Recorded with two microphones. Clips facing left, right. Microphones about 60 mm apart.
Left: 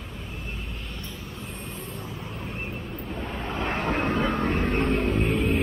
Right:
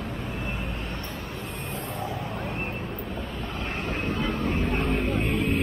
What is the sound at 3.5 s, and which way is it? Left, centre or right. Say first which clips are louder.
Vehicle: left 6 dB; left.